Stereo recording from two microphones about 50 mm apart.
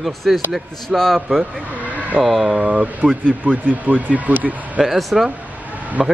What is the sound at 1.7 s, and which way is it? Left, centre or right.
Vehicle, right.